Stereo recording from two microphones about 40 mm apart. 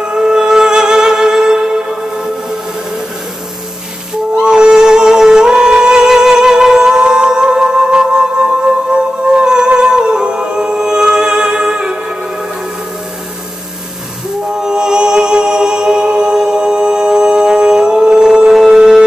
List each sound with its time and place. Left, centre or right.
0.0 s music: centre
4.4 s music: right
14.5 s music: centre